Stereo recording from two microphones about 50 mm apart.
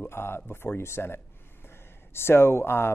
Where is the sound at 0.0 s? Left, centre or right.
Left.